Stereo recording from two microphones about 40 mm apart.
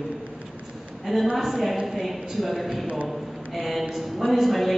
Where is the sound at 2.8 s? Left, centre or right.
Right.